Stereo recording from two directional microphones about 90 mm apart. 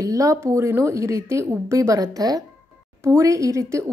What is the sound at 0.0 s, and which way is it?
A woman's voice, 40° right (ahead or behind).